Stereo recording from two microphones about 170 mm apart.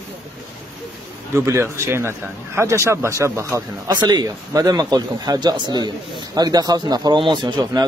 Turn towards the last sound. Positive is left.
turn(degrees=-25)  # may be behind; listen again after turning